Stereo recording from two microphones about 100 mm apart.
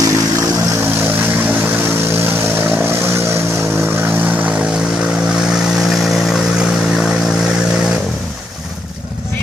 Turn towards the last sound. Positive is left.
turn(degrees=-5)  # may be behind; listen again after turning